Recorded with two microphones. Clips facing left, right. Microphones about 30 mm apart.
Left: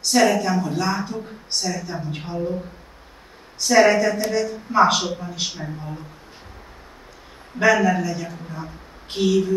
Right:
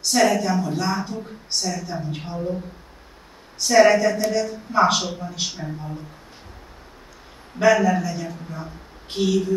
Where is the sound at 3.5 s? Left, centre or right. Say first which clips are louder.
Right 1 dB; centre.